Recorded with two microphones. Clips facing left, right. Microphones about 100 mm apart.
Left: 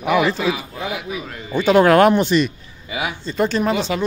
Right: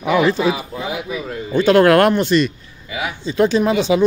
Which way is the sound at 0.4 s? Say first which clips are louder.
Right 3 dB; 35° right (ahead or behind).